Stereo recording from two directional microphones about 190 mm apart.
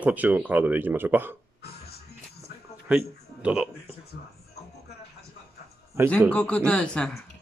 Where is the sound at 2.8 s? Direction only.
5° right (ahead or behind).